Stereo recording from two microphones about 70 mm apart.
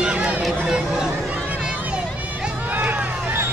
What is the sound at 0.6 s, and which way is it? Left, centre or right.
Speech, centre.